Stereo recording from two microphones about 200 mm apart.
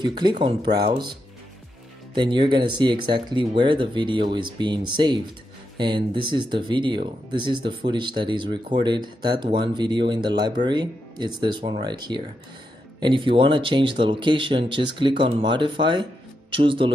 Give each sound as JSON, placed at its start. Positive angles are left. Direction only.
{"t": 0.0, "sound": "speech", "side_deg": -20}
{"t": 2.1, "sound": "speech", "side_deg": -25}